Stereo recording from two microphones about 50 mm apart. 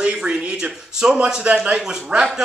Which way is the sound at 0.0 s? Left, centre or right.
Centre.